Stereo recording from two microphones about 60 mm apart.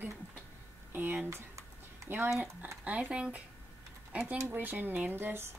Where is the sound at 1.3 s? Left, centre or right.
Right.